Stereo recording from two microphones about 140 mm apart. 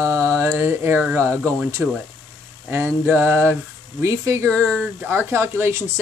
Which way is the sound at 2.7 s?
15° right (ahead or behind).